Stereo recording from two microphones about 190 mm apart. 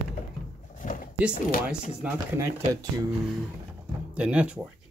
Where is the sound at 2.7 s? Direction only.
20° right (ahead or behind).